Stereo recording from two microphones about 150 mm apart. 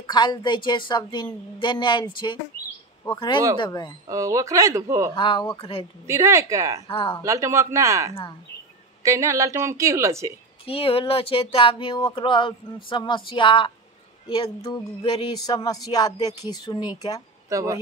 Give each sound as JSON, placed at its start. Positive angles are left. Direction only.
{"t": 0.1, "sound": "speech", "side_deg": 30}
{"t": 4.1, "sound": "a woman's voice", "side_deg": -20}
{"t": 5.1, "sound": "speech", "side_deg": 35}
{"t": 6.0, "sound": "a woman's voice", "side_deg": -20}
{"t": 6.9, "sound": "speech", "side_deg": 35}
{"t": 7.2, "sound": "a woman's voice", "side_deg": -20}
{"t": 8.1, "sound": "speech", "side_deg": 35}
{"t": 9.0, "sound": "a woman's voice", "side_deg": -20}
{"t": 10.7, "sound": "speech", "side_deg": 40}
{"t": 17.5, "sound": "speech", "side_deg": -20}